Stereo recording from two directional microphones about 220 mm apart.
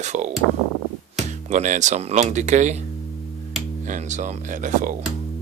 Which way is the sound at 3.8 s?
35° right (ahead or behind).